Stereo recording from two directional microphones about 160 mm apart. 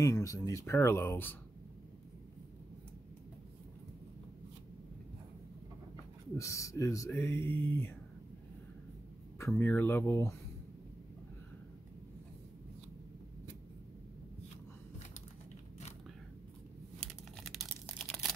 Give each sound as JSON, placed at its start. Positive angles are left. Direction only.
{"t": 0.0, "sound": "speech", "side_deg": 20}
{"t": 6.3, "sound": "speech", "side_deg": 20}
{"t": 9.6, "sound": "speech", "side_deg": 15}
{"t": 17.0, "sound": "crumpling", "side_deg": 0}